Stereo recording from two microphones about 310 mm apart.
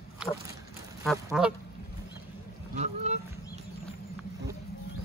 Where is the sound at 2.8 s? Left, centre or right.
Right.